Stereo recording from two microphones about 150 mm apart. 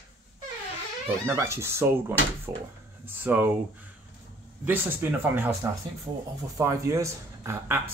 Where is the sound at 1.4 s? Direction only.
20° right (ahead or behind).